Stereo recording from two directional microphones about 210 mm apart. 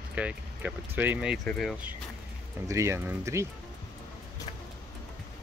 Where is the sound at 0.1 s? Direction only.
5° right (ahead or behind).